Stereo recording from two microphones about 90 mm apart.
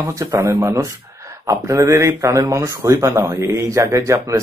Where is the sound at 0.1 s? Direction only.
35° right (ahead or behind).